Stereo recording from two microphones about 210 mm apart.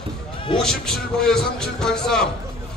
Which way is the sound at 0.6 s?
5° left (ahead or behind).